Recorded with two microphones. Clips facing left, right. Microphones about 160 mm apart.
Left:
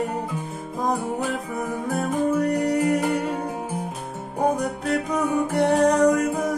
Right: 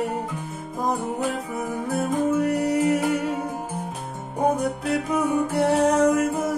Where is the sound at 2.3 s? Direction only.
5° right (ahead or behind).